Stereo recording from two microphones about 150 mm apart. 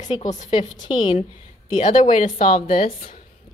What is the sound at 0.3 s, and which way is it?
Speech, 55° left (ahead or behind).